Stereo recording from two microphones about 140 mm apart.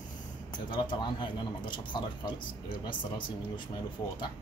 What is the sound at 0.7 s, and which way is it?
Speech, 35° left (ahead or behind).